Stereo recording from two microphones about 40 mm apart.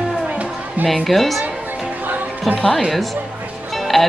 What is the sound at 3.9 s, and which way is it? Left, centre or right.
Speech, centre.